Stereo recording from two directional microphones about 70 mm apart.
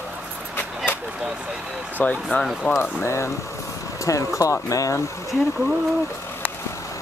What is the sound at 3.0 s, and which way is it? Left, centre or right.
Speech, left.